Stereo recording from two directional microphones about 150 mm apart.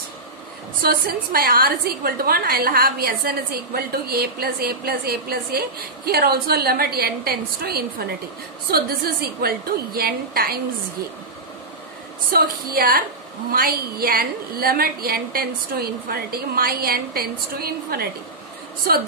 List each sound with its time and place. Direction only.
0.8 s a woman's voice: 80° right
12.3 s a woman's voice: 80° right